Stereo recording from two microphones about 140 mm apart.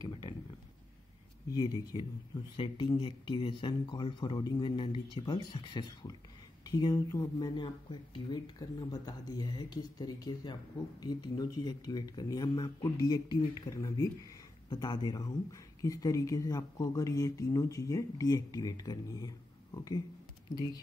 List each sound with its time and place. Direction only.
1.5 s speech: 30° left (ahead or behind)